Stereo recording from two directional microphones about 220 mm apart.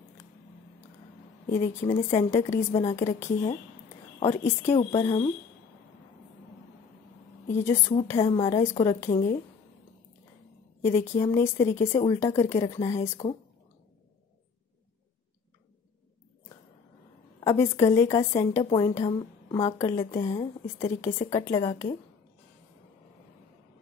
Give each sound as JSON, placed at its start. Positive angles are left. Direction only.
{"t": 1.9, "sound": "a woman's voice", "side_deg": 20}
{"t": 2.7, "sound": "a woman's voice", "side_deg": 25}
{"t": 3.0, "sound": "a woman's voice", "side_deg": 15}
{"t": 4.2, "sound": "a woman's voice", "side_deg": 30}
{"t": 7.4, "sound": "a woman's voice", "side_deg": 10}
{"t": 8.0, "sound": "a woman's voice", "side_deg": 25}
{"t": 10.8, "sound": "a woman's voice", "side_deg": 15}
{"t": 11.9, "sound": "a woman's voice", "side_deg": 25}
{"t": 12.2, "sound": "a woman's voice", "side_deg": 15}
{"t": 17.4, "sound": "a woman's voice", "side_deg": 15}
{"t": 20.3, "sound": "a woman's voice", "side_deg": 30}